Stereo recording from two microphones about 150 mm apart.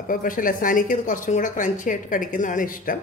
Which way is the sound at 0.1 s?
65° left (ahead or behind).